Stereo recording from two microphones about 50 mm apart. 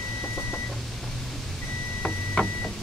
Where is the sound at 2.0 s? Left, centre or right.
Left.